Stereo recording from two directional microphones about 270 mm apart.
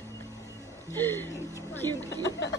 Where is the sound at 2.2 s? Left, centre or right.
Left.